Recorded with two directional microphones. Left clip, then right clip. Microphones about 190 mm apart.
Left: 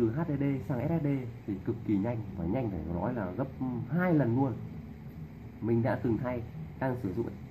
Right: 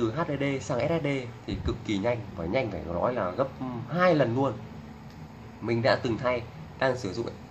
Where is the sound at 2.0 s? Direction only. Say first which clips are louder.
Right 7 dB; 15° right (ahead or behind).